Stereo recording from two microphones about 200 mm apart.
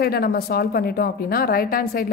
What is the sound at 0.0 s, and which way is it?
A woman's voice, 50° left (ahead or behind).